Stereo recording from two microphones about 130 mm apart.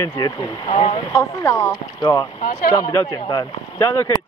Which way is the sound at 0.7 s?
55° left (ahead or behind).